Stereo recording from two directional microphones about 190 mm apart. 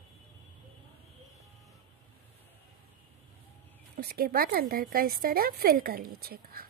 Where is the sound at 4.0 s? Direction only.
55° right (ahead or behind).